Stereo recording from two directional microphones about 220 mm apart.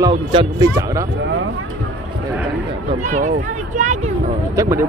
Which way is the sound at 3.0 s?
35° right (ahead or behind).